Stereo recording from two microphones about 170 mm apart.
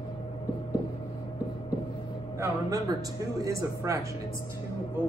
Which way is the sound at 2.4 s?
20° right (ahead or behind).